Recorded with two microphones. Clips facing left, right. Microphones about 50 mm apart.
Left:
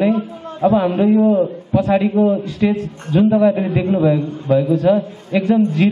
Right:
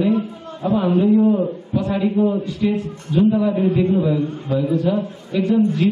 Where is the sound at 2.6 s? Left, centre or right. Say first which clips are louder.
Left 3 dB; left.